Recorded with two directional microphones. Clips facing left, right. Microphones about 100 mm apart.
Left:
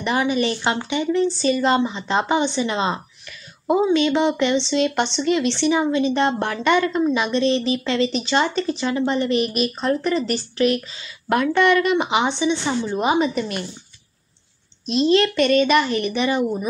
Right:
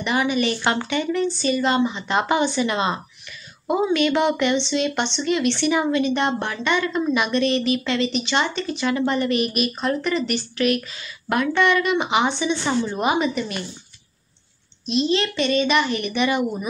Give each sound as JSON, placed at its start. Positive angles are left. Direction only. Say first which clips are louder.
{"t": 0.0, "sound": "speech", "louder": "left 1 dB", "side_deg": 35}
{"t": 0.7, "sound": "speech", "louder": "left 1 dB", "side_deg": 20}
{"t": 1.2, "sound": "a woman's voice", "louder": "left 2 dB", "side_deg": 35}
{"t": 13.0, "sound": "speech", "louder": "left 4 dB", "side_deg": 30}
{"t": 14.9, "sound": "speech", "louder": "left 4 dB", "side_deg": 45}